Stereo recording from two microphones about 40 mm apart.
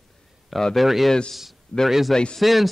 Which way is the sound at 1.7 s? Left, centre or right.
Left.